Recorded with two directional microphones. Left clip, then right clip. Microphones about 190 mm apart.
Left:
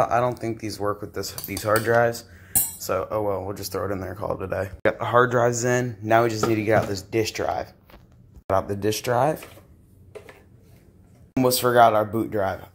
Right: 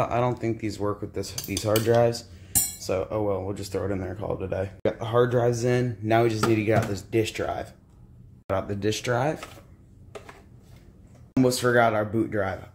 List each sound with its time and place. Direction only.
0.1 s speech: 5° right (ahead or behind)
1.6 s cutlery: 15° right (ahead or behind)
3.7 s speech: 10° right (ahead or behind)
4.1 s speech: centre (ahead or behind)
11.3 s speech: 5° left (ahead or behind)